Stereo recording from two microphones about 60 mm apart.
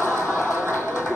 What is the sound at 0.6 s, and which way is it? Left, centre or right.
Music, left.